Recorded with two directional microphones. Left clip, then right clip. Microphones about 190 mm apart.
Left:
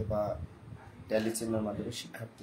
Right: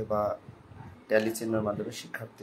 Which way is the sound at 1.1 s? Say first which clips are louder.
Right 5 dB; 15° right (ahead or behind).